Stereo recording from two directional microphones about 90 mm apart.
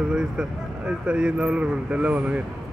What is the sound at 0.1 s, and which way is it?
Speech, 10° right (ahead or behind).